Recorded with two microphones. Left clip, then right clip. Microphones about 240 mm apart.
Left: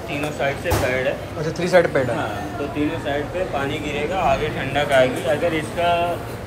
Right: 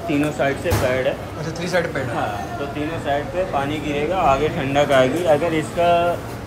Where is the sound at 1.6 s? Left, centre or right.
Centre.